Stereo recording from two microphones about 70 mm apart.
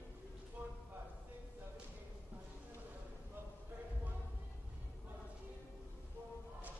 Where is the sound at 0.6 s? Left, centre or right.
Right.